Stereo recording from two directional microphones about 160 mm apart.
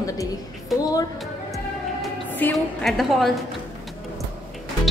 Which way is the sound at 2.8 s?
Centre (ahead or behind).